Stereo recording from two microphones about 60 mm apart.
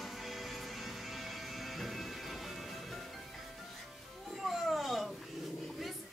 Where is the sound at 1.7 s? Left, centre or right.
Centre.